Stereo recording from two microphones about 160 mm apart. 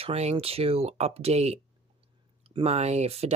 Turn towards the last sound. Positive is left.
turn(degrees=-40)  # may be behind; listen again after turning